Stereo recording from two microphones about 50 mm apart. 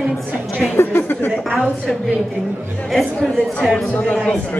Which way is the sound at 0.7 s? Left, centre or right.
Left.